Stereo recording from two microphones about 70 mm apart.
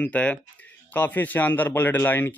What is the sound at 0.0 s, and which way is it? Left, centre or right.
Speech, centre.